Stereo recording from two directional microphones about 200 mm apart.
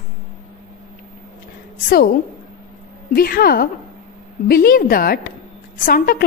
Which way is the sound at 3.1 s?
50° left (ahead or behind).